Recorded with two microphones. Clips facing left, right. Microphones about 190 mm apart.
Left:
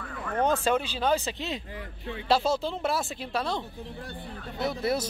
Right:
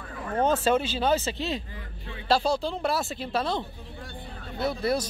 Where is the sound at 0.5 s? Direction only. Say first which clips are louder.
Right 3 dB; 10° left (ahead or behind).